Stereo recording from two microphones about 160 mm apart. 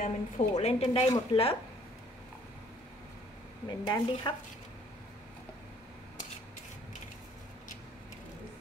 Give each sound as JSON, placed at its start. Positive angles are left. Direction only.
{"t": 0.0, "sound": "a woman's voice", "side_deg": 45}
{"t": 3.8, "sound": "speech", "side_deg": 25}